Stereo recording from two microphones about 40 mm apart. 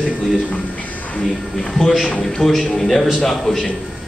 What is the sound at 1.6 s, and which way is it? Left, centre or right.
A man's voice, centre.